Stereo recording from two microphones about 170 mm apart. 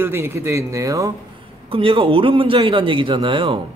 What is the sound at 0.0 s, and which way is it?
Speech, 15° right (ahead or behind).